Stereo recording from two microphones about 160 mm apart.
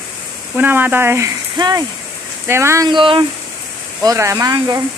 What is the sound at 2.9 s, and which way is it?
Speech, 30° right (ahead or behind).